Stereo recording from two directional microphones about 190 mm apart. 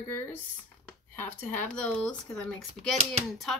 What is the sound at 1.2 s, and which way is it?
Speech, 10° left (ahead or behind).